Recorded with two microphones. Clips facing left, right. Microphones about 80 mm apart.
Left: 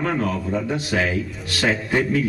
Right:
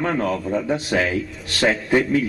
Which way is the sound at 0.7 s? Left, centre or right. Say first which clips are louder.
Right 2 dB; centre.